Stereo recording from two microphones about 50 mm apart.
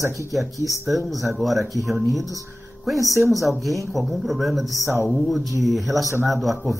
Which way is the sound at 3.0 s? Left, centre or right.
Right.